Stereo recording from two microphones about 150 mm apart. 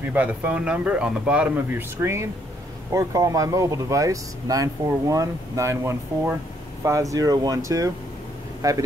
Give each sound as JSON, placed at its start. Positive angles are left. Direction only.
{"t": 0.1, "sound": "speech", "side_deg": -10}